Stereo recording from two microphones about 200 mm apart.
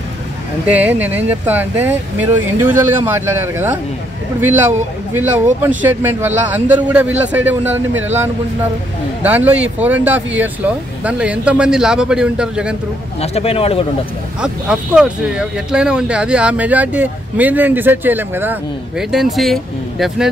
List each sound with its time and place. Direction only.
0.7 s speech: 10° right (ahead or behind)
9.2 s speech: 10° right (ahead or behind)
13.2 s speech: 30° left (ahead or behind)
14.4 s speech: 5° right (ahead or behind)